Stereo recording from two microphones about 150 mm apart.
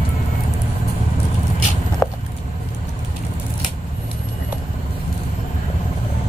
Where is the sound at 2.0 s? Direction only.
15° left (ahead or behind).